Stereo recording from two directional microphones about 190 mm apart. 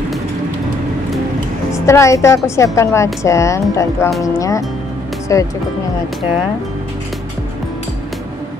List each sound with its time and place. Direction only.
1.7 s a woman's voice: 15° left (ahead or behind)